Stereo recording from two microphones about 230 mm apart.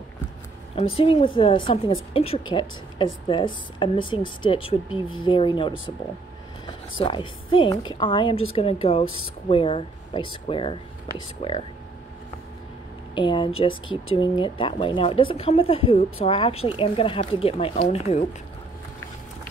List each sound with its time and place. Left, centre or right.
0.7 s speech: left
7.0 s speech: left
13.1 s speech: left